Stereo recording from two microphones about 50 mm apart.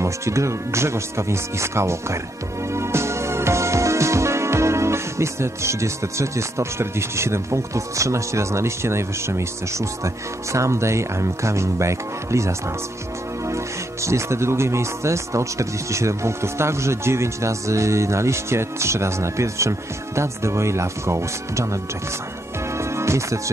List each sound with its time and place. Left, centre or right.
0.0 s speech: right
2.7 s music: right
14.0 s speech: right
22.8 s music: right